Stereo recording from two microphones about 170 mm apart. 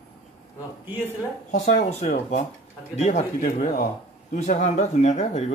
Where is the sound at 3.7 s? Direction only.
60° left (ahead or behind).